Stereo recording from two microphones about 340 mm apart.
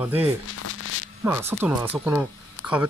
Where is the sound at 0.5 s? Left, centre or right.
Left.